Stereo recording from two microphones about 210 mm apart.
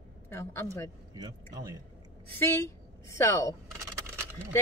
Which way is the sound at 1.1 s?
20° right (ahead or behind).